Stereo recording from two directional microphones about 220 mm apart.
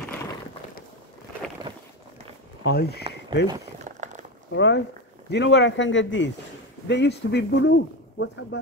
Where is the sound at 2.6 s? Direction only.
45° left (ahead or behind).